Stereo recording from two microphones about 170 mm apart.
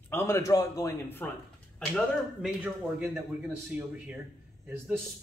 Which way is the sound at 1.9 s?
5° right (ahead or behind).